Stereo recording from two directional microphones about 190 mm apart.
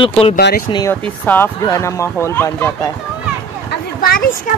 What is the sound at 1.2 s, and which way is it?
Speech, 10° left (ahead or behind).